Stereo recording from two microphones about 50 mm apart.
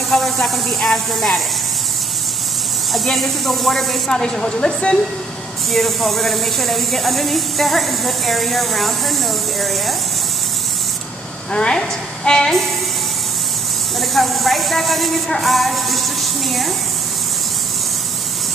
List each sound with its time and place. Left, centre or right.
0.1 s speech: centre
2.9 s speech: centre
4.1 s speech: centre
5.7 s speech: centre
11.5 s a woman's voice: centre
13.9 s a woman's voice: centre